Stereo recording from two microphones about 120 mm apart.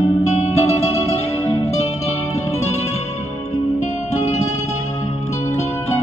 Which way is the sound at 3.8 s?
75° left (ahead or behind).